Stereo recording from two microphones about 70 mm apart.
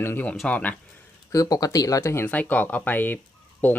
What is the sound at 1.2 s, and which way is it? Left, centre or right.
Speech, left.